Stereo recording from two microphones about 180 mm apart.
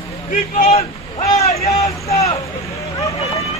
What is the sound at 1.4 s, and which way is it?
Vehicle, 35° left (ahead or behind).